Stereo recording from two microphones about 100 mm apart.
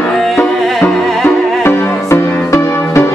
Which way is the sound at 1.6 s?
20° left (ahead or behind).